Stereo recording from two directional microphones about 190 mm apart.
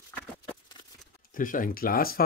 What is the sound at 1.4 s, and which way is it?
Speech, 45° left (ahead or behind).